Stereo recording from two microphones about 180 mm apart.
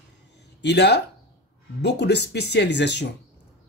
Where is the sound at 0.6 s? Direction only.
70° left (ahead or behind).